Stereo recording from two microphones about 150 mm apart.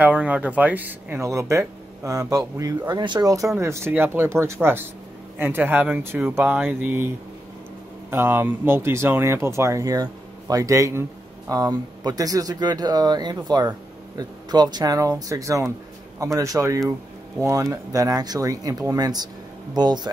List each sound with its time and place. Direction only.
0.0 s speech: 10° right (ahead or behind)
8.1 s a man's voice: 15° right (ahead or behind)